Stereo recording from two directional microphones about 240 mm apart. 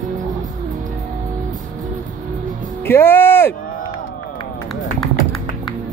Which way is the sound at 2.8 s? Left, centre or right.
Centre.